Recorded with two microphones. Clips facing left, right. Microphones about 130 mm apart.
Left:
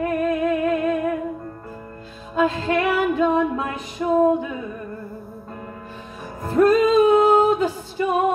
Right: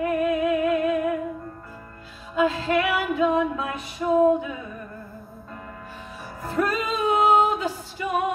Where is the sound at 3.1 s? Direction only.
45° left (ahead or behind).